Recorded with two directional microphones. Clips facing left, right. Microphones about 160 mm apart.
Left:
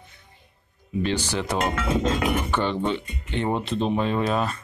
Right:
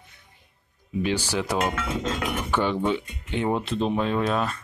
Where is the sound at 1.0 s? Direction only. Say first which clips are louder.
Even; 10° right (ahead or behind).